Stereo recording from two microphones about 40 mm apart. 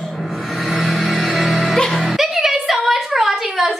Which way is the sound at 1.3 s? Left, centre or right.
Centre.